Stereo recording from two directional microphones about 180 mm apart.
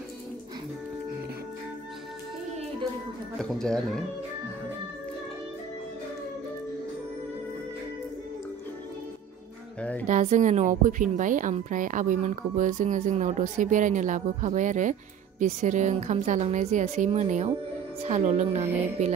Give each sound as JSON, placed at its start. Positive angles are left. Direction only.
{"t": 3.3, "sound": "speech", "side_deg": 5}
{"t": 9.8, "sound": "music", "side_deg": 10}
{"t": 10.0, "sound": "a woman's voice", "side_deg": -40}